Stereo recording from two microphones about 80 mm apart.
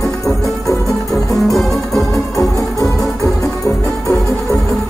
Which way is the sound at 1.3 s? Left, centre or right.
Centre.